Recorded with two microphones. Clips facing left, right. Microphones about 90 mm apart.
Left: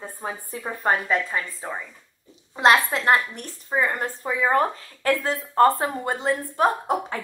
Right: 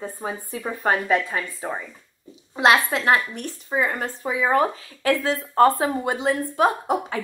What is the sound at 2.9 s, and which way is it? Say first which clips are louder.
A woman's voice: even; 10° right (ahead or behind).